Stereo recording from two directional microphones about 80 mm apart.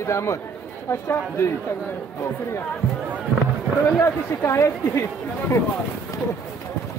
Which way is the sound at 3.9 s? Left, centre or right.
Left.